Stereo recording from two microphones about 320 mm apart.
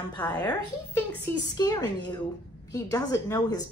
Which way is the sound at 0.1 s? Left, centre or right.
Centre.